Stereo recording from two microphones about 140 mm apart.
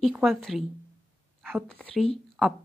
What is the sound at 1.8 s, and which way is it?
Speech, 10° left (ahead or behind).